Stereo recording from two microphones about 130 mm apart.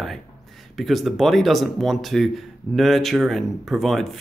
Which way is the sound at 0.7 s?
Centre (ahead or behind).